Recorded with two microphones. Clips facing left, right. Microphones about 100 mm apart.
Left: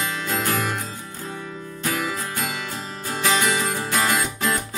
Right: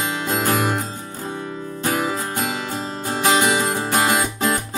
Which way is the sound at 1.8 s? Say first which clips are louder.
Right 4 dB; 35° right (ahead or behind).